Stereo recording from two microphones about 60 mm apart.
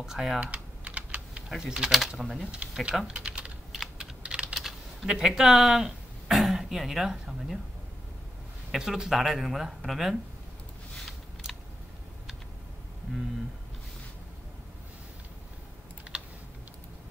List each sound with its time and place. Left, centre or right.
0.0 s speech: centre
0.4 s typing: right
1.6 s speech: centre
2.4 s speech: centre
3.1 s typing: centre
3.7 s typing: centre
4.2 s typing: centre
4.6 s speech: centre
8.7 s speech: centre
16.1 s typing: centre